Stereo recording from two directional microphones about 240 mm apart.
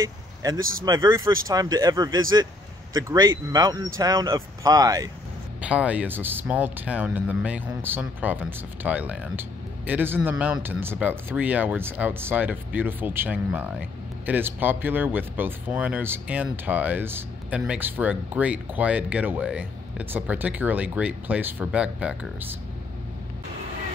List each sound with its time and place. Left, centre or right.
0.0 s vehicle: centre
0.8 s speech: centre
5.6 s speech: centre